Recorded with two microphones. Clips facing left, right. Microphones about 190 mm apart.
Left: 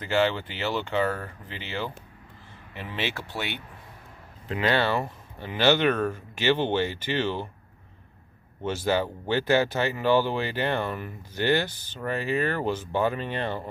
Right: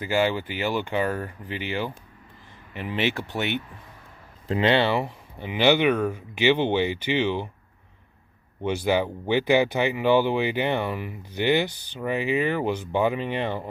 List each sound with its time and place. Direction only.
0.0 s speech: 10° right (ahead or behind)
8.6 s speech: 15° right (ahead or behind)